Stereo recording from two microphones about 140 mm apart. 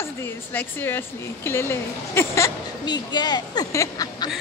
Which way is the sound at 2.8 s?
30° left (ahead or behind).